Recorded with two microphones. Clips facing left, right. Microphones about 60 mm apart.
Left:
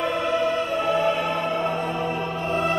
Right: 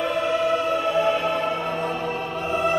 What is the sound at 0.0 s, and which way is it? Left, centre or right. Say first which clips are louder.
Music: even; centre.